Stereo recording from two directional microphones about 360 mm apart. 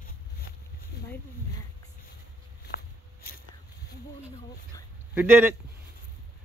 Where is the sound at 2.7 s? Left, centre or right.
Left.